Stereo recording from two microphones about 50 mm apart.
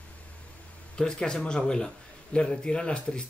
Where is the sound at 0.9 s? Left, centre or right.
Centre.